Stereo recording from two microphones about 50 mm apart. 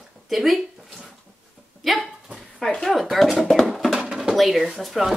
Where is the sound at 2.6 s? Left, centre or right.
Centre.